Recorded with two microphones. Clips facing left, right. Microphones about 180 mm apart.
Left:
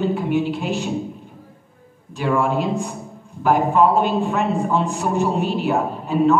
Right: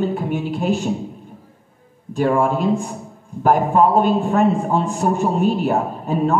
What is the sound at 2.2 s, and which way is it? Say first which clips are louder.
A man's voice: right 3 dB; 45° right (ahead or behind).